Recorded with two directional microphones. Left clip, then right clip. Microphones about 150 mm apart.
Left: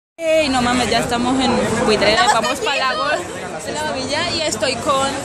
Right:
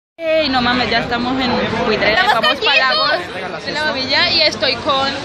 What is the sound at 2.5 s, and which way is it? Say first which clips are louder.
A woman's voice: right 5 dB; 5° left (ahead or behind).